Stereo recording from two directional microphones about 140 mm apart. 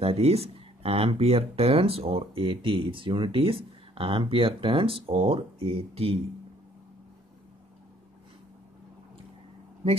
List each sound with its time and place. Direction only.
0.0 s speech: 45° right (ahead or behind)